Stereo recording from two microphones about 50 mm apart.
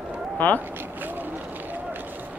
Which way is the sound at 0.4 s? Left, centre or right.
Left.